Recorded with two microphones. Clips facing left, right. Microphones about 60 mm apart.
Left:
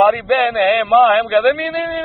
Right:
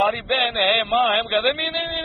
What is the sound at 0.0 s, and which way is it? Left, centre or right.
A man's voice, left.